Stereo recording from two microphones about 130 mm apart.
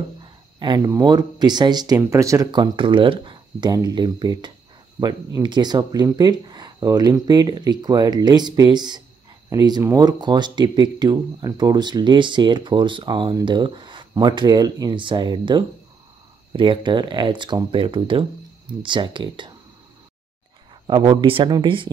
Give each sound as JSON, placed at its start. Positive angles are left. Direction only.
{"t": 0.2, "sound": "speech", "side_deg": -35}
{"t": 20.8, "sound": "speech", "side_deg": -35}